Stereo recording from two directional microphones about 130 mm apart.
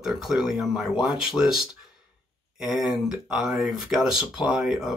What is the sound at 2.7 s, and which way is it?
Speech, centre (ahead or behind).